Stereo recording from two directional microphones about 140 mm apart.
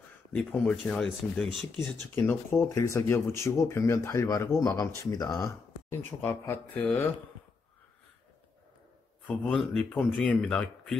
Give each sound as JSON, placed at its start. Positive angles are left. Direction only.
{"t": 0.3, "sound": "speech", "side_deg": 5}
{"t": 1.8, "sound": "speech", "side_deg": 15}
{"t": 5.4, "sound": "speech", "side_deg": 15}
{"t": 9.3, "sound": "speech", "side_deg": 5}